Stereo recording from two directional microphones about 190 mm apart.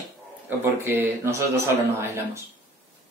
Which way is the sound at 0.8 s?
10° right (ahead or behind).